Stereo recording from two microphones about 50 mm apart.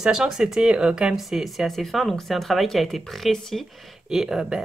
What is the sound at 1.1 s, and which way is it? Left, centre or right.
Speech, centre.